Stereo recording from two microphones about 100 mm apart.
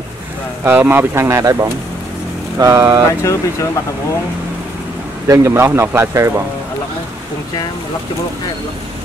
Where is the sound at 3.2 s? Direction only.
30° left (ahead or behind).